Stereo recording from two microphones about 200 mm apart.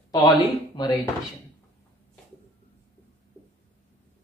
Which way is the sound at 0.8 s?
20° left (ahead or behind).